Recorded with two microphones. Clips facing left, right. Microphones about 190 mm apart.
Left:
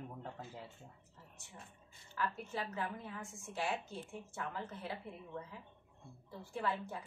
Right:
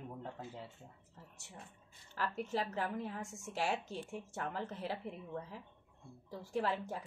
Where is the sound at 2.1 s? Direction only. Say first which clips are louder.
Right 2 dB; 40° right (ahead or behind).